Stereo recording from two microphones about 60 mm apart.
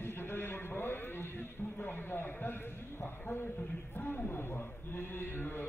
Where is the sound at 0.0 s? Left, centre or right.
Left.